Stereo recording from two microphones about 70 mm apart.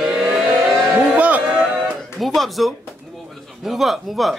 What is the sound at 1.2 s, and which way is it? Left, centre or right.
Music, centre.